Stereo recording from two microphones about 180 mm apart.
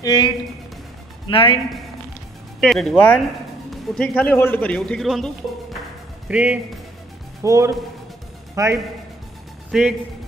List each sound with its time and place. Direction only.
0.0 s a man's voice: 20° left (ahead or behind)
2.6 s a man's voice: centre (ahead or behind)
7.4 s speech: 15° right (ahead or behind)
9.7 s a man's voice: 5° right (ahead or behind)